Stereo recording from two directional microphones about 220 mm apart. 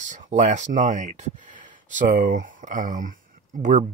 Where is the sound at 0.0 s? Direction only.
35° right (ahead or behind).